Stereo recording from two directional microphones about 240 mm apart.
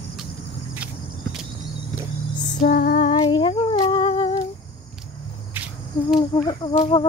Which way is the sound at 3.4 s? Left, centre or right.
Left.